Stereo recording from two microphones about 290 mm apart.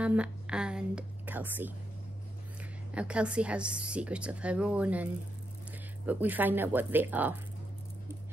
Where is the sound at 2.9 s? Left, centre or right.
Centre.